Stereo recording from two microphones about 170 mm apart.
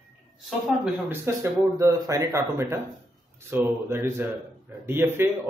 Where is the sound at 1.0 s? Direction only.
15° right (ahead or behind).